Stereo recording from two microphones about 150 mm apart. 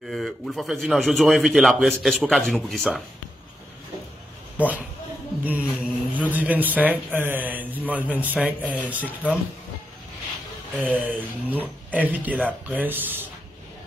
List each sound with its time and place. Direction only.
0.1 s speech: centre (ahead or behind)
4.6 s speech: 10° right (ahead or behind)
8.6 s speech: 10° left (ahead or behind)
8.9 s speech: 10° right (ahead or behind)
10.8 s speech: 10° right (ahead or behind)